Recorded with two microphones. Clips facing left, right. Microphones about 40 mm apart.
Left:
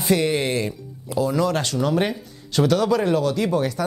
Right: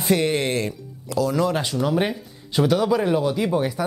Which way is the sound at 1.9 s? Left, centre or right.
Centre.